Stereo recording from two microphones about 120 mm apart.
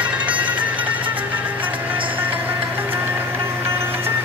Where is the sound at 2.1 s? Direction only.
15° right (ahead or behind).